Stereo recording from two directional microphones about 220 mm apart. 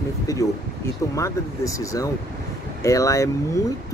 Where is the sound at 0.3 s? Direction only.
15° left (ahead or behind).